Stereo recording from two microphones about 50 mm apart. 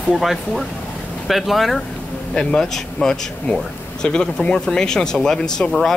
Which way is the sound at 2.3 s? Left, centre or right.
Centre.